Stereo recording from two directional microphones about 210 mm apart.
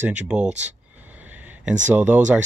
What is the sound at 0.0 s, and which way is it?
Speech, 5° right (ahead or behind).